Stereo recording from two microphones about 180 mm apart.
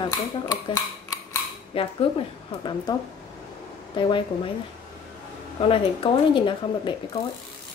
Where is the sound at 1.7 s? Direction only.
30° left (ahead or behind).